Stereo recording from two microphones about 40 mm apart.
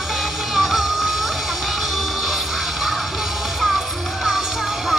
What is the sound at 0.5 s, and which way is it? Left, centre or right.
Music, centre.